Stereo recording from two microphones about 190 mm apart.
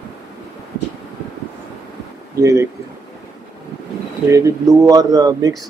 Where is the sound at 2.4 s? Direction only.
15° right (ahead or behind).